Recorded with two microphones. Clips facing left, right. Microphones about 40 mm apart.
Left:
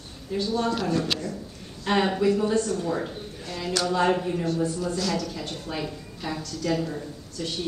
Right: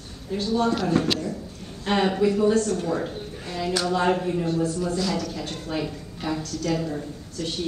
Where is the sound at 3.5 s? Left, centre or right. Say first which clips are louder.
Right 2 dB; centre.